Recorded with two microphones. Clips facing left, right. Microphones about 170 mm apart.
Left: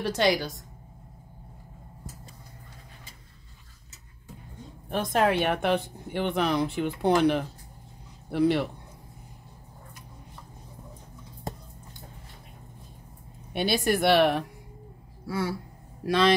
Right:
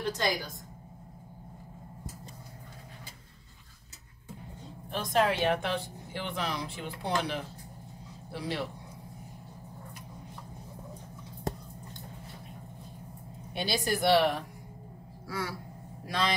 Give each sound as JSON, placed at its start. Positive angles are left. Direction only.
{"t": 0.0, "sound": "a woman's voice", "side_deg": 80}
{"t": 4.9, "sound": "speech", "side_deg": 55}
{"t": 13.5, "sound": "speech", "side_deg": 60}
{"t": 15.2, "sound": "speech", "side_deg": 30}
{"t": 16.1, "sound": "speech", "side_deg": 75}